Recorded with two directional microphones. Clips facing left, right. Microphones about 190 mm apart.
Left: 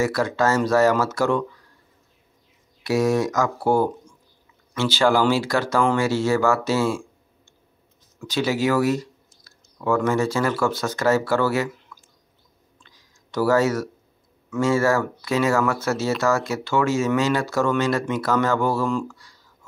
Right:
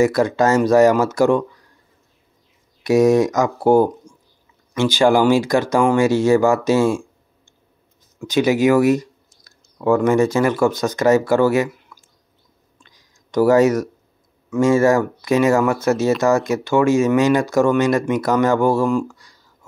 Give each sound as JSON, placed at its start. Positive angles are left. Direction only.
{"t": 0.0, "sound": "speech", "side_deg": -15}
{"t": 2.8, "sound": "speech", "side_deg": -20}
{"t": 8.2, "sound": "speech", "side_deg": -15}
{"t": 12.8, "sound": "a sound", "side_deg": -15}
{"t": 14.5, "sound": "speech", "side_deg": -15}